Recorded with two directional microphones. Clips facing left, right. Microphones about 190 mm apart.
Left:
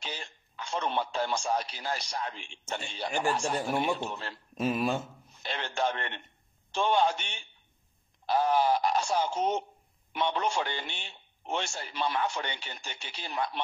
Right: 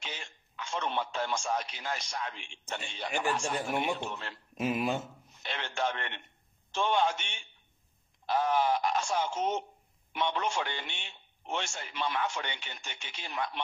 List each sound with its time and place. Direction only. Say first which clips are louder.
0.0 s a man's voice: left 3 dB; 35° left (ahead or behind)
4.6 s speech: left 2 dB; 15° right (ahead or behind)
5.4 s a man's voice: left 2 dB; 35° left (ahead or behind)